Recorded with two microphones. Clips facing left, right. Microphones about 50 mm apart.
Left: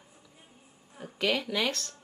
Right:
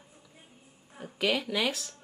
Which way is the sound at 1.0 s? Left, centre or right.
Centre.